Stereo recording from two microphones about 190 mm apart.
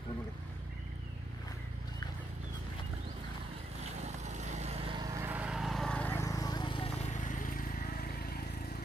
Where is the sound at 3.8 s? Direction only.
35° right (ahead or behind); by 8.8 s 55° left (ahead or behind).